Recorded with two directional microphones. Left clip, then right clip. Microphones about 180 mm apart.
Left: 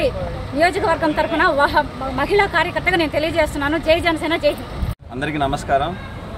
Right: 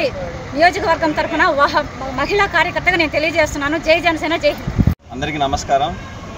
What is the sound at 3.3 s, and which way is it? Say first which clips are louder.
A woman's voice: right 2 dB; 5° left (ahead or behind).